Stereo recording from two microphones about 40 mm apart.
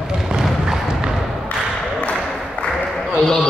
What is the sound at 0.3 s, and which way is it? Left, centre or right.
Thump, centre.